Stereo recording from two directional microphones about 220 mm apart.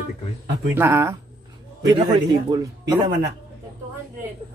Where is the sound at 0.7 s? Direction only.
10° right (ahead or behind).